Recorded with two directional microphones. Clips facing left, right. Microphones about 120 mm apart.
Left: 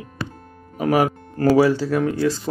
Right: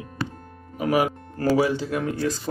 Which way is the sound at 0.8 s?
40° left (ahead or behind).